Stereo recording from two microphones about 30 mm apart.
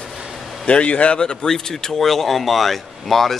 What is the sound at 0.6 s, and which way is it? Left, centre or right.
Speech, left.